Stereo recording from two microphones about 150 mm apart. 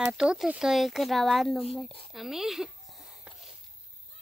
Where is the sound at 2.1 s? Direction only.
Centre (ahead or behind).